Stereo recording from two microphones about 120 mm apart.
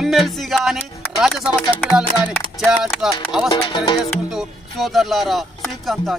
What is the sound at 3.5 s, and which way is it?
Music, 40° left (ahead or behind).